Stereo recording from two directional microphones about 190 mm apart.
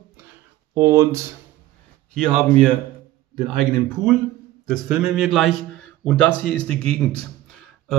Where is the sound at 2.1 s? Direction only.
Centre (ahead or behind).